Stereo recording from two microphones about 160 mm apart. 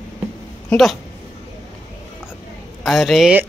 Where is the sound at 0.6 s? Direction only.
Centre (ahead or behind).